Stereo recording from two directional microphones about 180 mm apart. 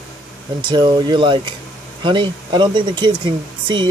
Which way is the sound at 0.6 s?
25° right (ahead or behind).